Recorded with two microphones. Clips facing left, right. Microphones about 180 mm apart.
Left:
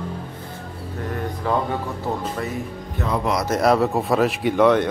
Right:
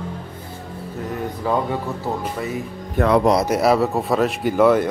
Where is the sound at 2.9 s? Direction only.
70° right (ahead or behind).